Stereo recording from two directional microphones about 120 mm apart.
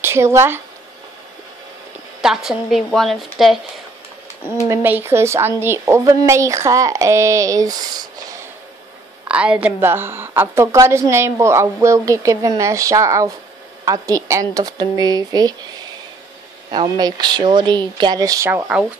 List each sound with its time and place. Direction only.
0.0 s speech: 20° right (ahead or behind)
2.2 s a woman's voice: 5° right (ahead or behind)
4.6 s a woman's voice: 20° right (ahead or behind)
9.3 s a woman's voice: 10° right (ahead or behind); by 15.5 s 35° right (ahead or behind)
16.7 s speech: 35° right (ahead or behind)